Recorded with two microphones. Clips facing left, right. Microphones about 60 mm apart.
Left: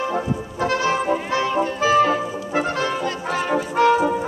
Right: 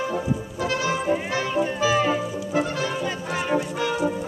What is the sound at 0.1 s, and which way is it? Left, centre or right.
Music, left.